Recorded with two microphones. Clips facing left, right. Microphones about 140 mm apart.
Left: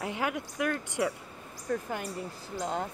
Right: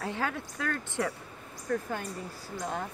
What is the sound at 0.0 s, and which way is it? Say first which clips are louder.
Speech: left 1 dB; 15° left (ahead or behind).